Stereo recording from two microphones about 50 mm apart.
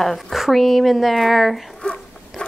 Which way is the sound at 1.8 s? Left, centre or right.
Centre.